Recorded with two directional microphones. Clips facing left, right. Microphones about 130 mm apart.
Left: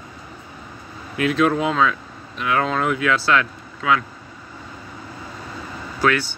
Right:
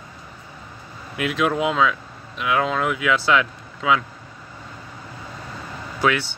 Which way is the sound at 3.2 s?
15° right (ahead or behind).